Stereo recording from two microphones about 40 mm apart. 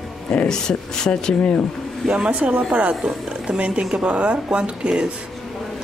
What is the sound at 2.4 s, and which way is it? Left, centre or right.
Speech, right.